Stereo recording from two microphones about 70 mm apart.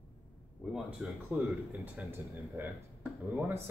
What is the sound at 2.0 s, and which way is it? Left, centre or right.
Speech, centre.